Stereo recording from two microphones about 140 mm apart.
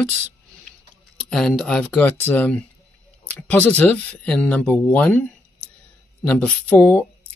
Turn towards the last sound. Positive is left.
turn(degrees=15)  # may be behind; listen again after turning